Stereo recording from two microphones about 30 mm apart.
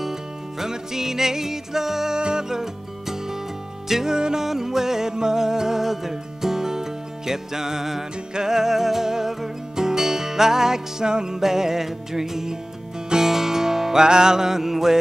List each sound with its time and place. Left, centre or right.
0.6 s music: centre
2.1 s music: right
2.5 s music: centre
14.0 s music: right